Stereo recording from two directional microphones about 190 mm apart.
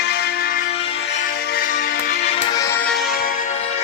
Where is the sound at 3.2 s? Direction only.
40° left (ahead or behind).